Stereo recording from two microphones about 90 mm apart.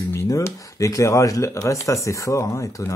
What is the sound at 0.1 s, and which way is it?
Speech, 35° left (ahead or behind).